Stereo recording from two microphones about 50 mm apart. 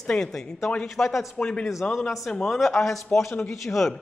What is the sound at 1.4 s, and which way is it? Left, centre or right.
Speech, centre.